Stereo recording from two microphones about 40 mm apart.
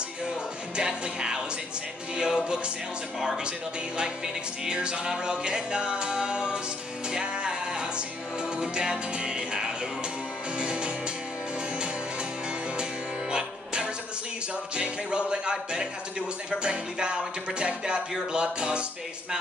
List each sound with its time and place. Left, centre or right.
0.7 s music: right
13.3 s music: right